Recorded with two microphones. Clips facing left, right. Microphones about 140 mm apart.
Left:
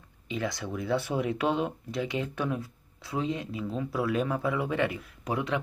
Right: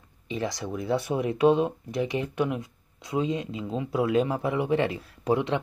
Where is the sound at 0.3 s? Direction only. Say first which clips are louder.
Right 2 dB; 20° right (ahead or behind).